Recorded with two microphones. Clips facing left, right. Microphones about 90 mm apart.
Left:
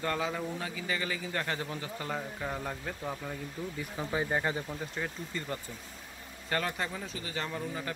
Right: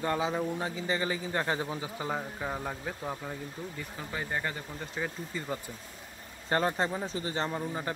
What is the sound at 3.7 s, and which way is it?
Speech, 15° left (ahead or behind).